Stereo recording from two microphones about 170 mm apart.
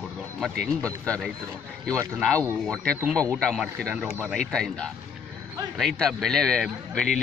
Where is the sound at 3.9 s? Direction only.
5° right (ahead or behind).